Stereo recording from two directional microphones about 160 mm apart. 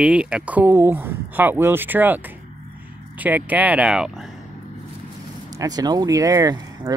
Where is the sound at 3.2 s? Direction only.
10° right (ahead or behind).